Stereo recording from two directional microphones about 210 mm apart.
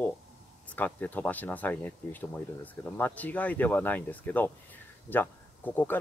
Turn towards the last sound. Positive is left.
turn(degrees=10)  # may be behind; listen again after turning